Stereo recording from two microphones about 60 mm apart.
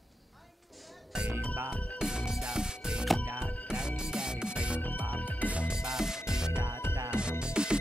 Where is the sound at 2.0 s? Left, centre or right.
Centre.